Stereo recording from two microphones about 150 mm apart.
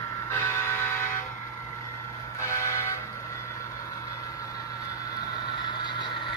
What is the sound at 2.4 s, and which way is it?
Vehicle, 20° left (ahead or behind).